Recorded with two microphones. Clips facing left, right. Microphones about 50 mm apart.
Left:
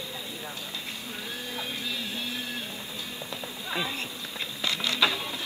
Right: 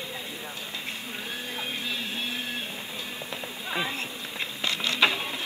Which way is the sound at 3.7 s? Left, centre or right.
Right.